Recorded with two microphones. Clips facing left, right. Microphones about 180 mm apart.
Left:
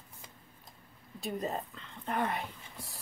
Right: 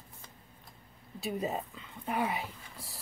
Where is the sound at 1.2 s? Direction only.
5° right (ahead or behind).